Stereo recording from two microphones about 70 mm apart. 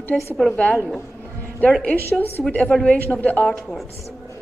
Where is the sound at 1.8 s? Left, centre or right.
Left.